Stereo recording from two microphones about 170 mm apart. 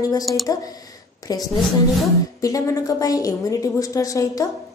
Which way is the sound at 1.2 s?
20° left (ahead or behind).